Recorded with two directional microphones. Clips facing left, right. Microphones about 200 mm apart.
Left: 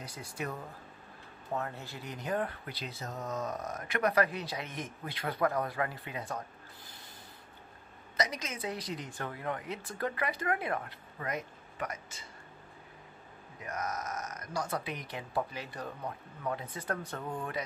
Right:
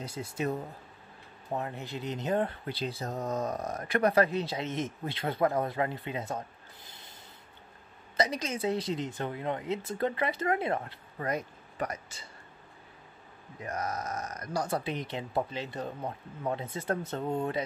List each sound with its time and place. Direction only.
0.0 s speech: 25° right (ahead or behind)
8.2 s speech: 30° right (ahead or behind)
13.6 s speech: 30° right (ahead or behind)